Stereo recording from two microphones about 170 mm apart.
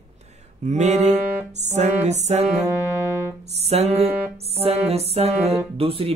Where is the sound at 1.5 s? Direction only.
40° right (ahead or behind).